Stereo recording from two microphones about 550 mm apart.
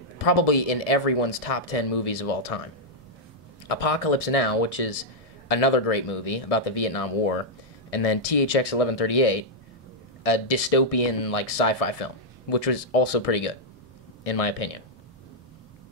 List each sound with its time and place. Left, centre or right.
0.2 s speech: left
3.6 s speech: left